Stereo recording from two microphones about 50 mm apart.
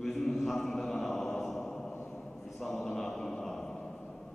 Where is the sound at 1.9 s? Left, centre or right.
Left.